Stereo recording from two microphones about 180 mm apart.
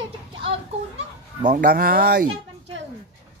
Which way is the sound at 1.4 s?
55° right (ahead or behind).